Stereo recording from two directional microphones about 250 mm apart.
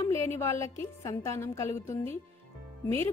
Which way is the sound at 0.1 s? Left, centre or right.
Centre.